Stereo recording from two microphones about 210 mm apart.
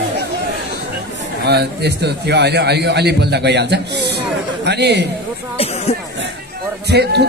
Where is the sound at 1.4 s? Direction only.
50° right (ahead or behind).